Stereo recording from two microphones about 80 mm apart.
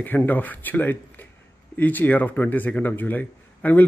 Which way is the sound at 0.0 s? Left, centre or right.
Left.